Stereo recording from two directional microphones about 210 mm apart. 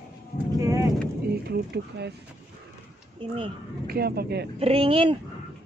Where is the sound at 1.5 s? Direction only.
50° right (ahead or behind).